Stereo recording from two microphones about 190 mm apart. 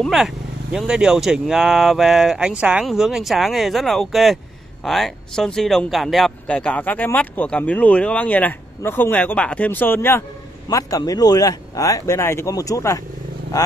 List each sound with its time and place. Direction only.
0.0 s speech: centre (ahead or behind); by 13.0 s 15° left (ahead or behind)